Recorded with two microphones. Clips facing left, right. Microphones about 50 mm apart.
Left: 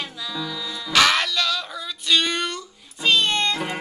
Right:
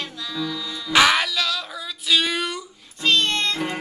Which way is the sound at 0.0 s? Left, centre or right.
Centre.